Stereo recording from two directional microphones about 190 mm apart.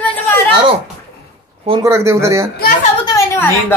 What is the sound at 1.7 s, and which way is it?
Speech, 15° right (ahead or behind).